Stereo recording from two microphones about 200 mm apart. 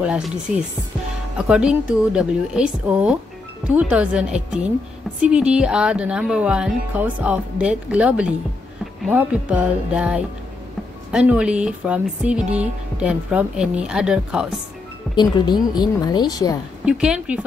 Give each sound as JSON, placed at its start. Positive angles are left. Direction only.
{"t": 0.0, "sound": "speech", "side_deg": -5}
{"t": 1.5, "sound": "speech", "side_deg": -5}
{"t": 15.1, "sound": "speech", "side_deg": 20}
{"t": 16.8, "sound": "speech", "side_deg": -5}